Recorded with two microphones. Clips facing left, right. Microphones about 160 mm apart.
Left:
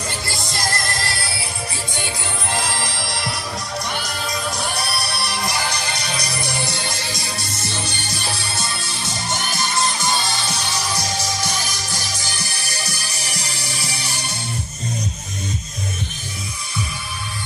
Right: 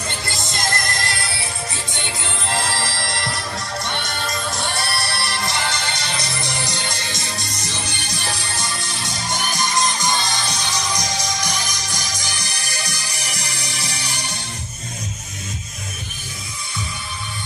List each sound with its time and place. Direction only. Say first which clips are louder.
0.3 s music: right 1 dB; 20° right (ahead or behind)
2.5 s music: right 2 dB; centre (ahead or behind)
5.7 s music: even; 25° right (ahead or behind)
8.5 s music: even; 15° right (ahead or behind)
10.9 s music: even; 10° left (ahead or behind)
11.4 s music: even; 15° right (ahead or behind)